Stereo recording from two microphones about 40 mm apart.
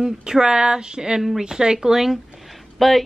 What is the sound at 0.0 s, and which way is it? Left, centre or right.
Speech, centre.